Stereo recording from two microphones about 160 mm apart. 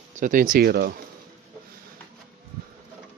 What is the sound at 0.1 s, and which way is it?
Speech, 55° right (ahead or behind).